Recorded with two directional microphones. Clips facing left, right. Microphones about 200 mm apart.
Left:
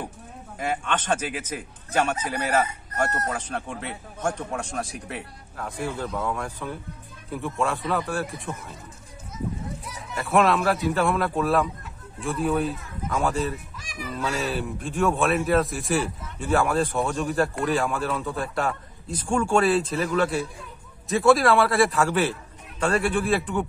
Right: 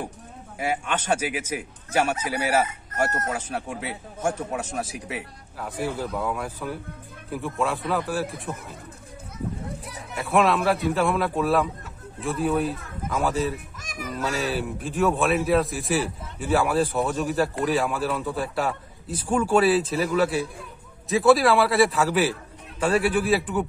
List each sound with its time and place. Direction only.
0.6 s a man's voice: 10° right (ahead or behind)
9.8 s a sound: 60° right (ahead or behind)
10.1 s speech: centre (ahead or behind)
13.7 s music: 45° right (ahead or behind)
14.5 s speech: centre (ahead or behind)